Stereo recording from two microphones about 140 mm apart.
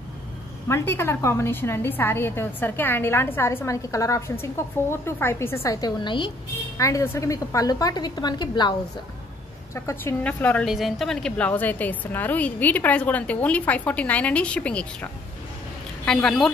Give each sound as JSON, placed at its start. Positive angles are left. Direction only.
{"t": 0.7, "sound": "a woman's voice", "side_deg": 15}
{"t": 6.8, "sound": "a woman's voice", "side_deg": 20}
{"t": 9.8, "sound": "a woman's voice", "side_deg": 20}
{"t": 10.6, "sound": "a woman's voice", "side_deg": 0}
{"t": 16.1, "sound": "speech", "side_deg": 5}